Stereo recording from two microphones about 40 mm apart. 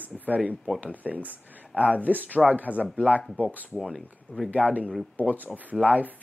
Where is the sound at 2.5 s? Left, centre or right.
Right.